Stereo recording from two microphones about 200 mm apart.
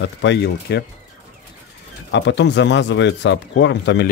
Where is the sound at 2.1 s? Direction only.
60° left (ahead or behind).